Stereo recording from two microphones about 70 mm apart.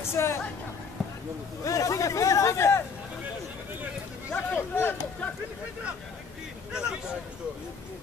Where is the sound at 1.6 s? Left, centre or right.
Left.